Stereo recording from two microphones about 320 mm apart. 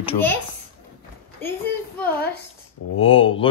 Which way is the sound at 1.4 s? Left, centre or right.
Centre.